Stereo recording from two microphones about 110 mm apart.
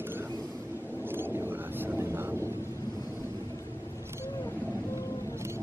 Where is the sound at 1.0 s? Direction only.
20° right (ahead or behind).